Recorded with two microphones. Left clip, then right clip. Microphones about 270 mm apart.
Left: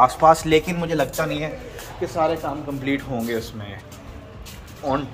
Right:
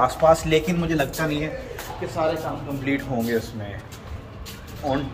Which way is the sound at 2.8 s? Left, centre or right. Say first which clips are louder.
Right 1 dB; centre.